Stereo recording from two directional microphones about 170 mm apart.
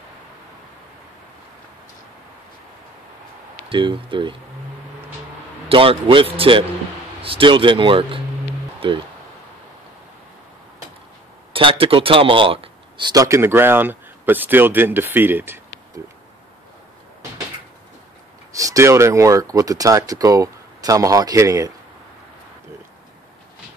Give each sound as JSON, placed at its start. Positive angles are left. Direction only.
{"t": 3.6, "sound": "speech", "side_deg": -30}
{"t": 5.7, "sound": "speech", "side_deg": -30}
{"t": 11.5, "sound": "speech", "side_deg": -30}
{"t": 18.5, "sound": "speech", "side_deg": -20}